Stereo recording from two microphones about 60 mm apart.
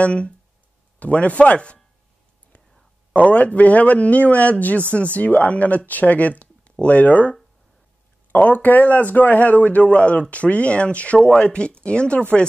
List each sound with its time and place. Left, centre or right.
0.0 s speech: centre
3.1 s speech: left